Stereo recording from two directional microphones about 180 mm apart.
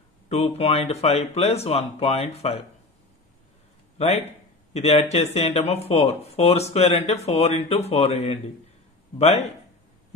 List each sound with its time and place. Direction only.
0.3 s speech: 35° left (ahead or behind)
4.7 s speech: 35° left (ahead or behind)